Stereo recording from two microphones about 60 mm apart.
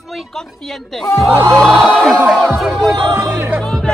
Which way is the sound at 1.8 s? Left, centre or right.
Centre.